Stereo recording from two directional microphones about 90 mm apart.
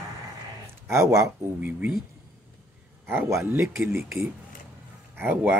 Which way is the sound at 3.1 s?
30° right (ahead or behind).